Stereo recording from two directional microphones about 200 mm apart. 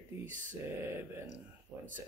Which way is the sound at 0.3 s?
40° right (ahead or behind).